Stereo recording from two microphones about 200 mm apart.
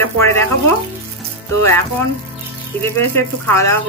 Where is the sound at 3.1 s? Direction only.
15° left (ahead or behind).